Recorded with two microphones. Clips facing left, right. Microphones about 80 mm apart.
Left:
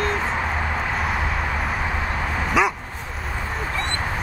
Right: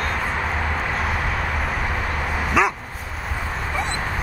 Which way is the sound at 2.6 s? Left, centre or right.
Centre.